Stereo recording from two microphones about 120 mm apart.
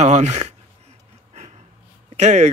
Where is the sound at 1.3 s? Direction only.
70° right (ahead or behind).